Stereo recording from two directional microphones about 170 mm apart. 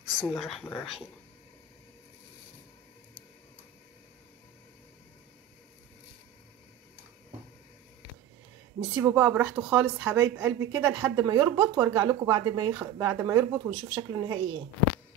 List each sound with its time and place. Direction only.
0.0 s speech: 5° right (ahead or behind)
8.9 s speech: 10° right (ahead or behind)
12.4 s speech: 30° right (ahead or behind)
12.7 s speech: 15° right (ahead or behind)